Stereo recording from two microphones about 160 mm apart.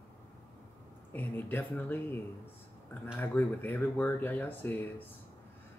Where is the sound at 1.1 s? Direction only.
10° left (ahead or behind).